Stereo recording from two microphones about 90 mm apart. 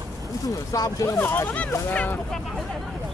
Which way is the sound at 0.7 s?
40° left (ahead or behind).